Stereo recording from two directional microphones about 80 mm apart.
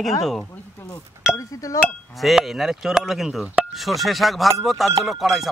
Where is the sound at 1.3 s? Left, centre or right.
Left.